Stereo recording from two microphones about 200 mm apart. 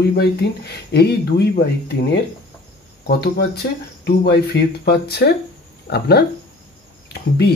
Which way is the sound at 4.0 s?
55° left (ahead or behind).